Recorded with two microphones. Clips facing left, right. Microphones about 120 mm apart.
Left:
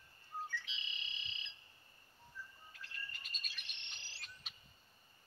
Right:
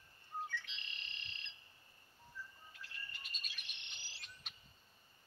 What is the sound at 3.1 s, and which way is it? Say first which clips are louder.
Bird: even; 40° left (ahead or behind).